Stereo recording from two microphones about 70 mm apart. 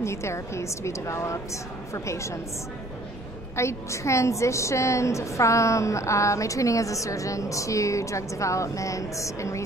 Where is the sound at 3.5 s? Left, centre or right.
Left.